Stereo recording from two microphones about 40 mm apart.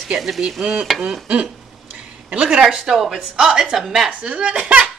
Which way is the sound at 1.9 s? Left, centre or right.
Centre.